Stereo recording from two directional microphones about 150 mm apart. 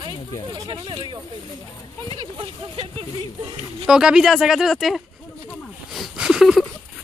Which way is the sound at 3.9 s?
5° right (ahead or behind).